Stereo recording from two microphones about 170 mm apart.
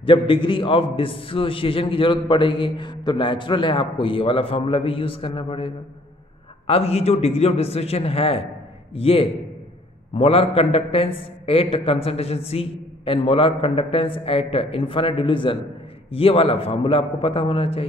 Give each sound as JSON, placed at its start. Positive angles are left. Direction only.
{"t": 0.0, "sound": "a man's voice", "side_deg": 30}
{"t": 6.7, "sound": "a man's voice", "side_deg": 35}